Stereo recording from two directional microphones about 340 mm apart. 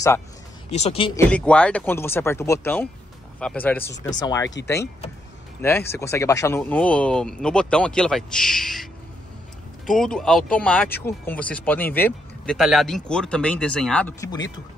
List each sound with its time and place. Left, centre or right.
0.7 s speech: centre
1.3 s speech: centre
5.6 s speech: centre
9.9 s speech: centre